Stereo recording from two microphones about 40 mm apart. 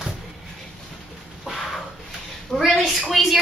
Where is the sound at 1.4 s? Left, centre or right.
Centre.